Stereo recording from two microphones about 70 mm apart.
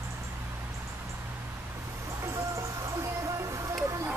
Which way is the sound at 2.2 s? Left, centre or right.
Right.